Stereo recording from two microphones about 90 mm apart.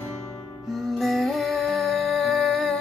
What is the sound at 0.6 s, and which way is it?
Music, centre (ahead or behind).